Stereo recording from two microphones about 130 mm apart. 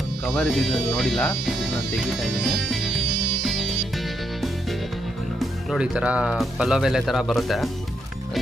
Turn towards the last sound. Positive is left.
turn(degrees=0)  # may be behind; listen again after turning